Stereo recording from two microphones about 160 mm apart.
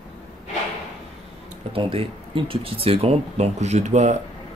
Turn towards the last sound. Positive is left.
turn(degrees=-45)  # may be behind; listen again after turning